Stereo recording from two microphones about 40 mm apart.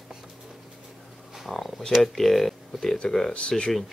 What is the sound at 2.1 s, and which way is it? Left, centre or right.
Speech, centre.